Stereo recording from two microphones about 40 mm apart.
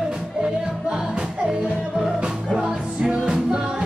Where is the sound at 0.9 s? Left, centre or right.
Centre.